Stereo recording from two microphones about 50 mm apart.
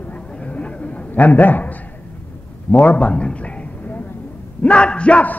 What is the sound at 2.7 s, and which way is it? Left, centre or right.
A man's voice, left.